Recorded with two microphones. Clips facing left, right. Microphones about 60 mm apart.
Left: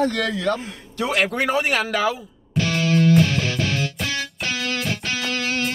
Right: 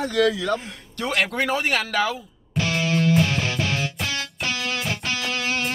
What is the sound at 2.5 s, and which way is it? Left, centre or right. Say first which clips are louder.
Music: left 3 dB; centre.